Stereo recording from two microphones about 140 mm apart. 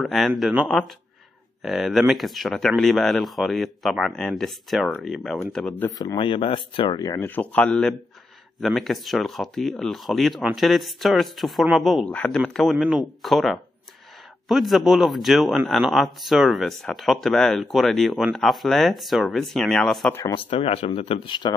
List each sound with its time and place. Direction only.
0.0 s a man's voice: centre (ahead or behind)
5.9 s speech: 25° left (ahead or behind)
7.0 s speech: 25° left (ahead or behind)
7.2 s a man's voice: 10° left (ahead or behind)
20.3 s speech: 40° left (ahead or behind)